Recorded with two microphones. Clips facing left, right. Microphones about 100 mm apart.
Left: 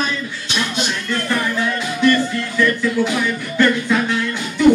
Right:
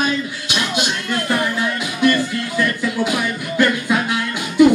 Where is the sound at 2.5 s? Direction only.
10° right (ahead or behind).